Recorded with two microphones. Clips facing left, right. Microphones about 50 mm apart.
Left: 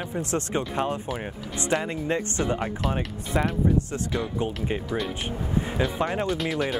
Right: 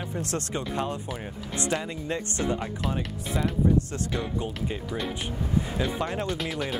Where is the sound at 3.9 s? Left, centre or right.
Left.